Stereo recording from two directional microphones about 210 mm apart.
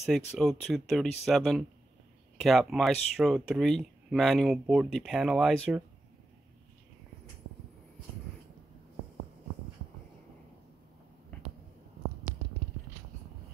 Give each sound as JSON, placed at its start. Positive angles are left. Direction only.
{"t": 0.0, "sound": "speech", "side_deg": 0}